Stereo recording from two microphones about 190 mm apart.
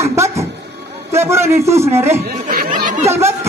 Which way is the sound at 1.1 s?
15° right (ahead or behind).